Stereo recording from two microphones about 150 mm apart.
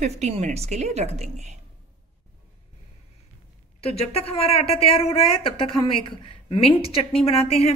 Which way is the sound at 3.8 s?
45° left (ahead or behind).